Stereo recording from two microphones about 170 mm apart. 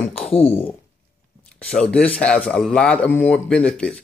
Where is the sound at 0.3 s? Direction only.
35° left (ahead or behind).